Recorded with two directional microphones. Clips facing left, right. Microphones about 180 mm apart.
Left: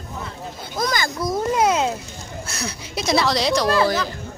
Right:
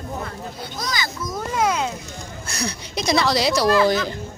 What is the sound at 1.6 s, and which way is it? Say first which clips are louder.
Speech: left 1 dB; 20° left (ahead or behind).